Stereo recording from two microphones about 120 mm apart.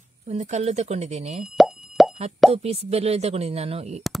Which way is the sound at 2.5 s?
55° right (ahead or behind).